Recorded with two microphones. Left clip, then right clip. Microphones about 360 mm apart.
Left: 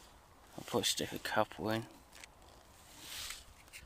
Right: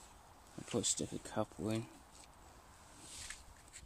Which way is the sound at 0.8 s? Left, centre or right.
Left.